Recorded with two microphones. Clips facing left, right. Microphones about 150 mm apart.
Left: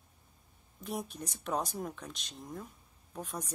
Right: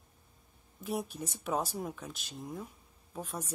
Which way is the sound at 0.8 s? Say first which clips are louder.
Right 3 dB; 5° right (ahead or behind).